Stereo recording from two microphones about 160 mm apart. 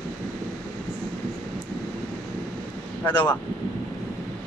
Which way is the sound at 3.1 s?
30° left (ahead or behind).